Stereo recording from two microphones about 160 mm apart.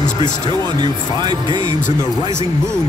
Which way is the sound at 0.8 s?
30° right (ahead or behind).